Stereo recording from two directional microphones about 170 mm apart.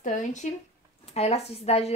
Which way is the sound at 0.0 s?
45° left (ahead or behind).